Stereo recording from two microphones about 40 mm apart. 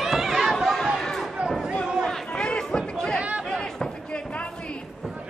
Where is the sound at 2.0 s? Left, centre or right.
Left.